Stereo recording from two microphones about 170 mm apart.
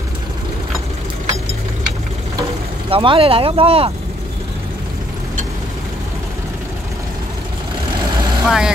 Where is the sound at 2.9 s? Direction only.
30° right (ahead or behind).